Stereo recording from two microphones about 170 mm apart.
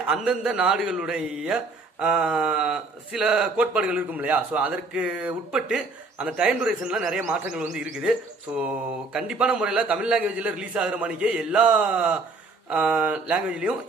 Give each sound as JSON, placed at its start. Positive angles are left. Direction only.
{"t": 0.0, "sound": "a man's voice", "side_deg": -5}